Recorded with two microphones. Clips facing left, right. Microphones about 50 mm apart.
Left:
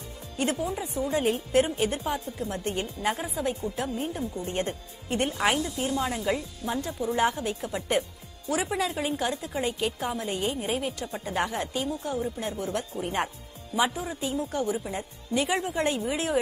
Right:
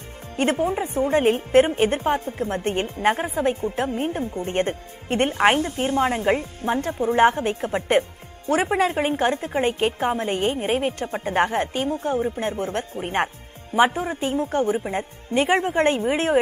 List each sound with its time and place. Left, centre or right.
0.4 s a woman's voice: right